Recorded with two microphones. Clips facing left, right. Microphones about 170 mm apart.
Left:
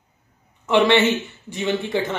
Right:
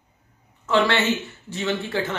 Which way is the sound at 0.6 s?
20° left (ahead or behind).